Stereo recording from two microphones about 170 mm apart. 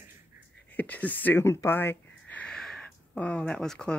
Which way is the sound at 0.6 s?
10° left (ahead or behind).